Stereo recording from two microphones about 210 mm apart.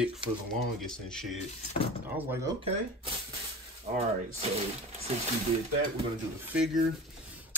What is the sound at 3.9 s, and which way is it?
Speech, 30° right (ahead or behind).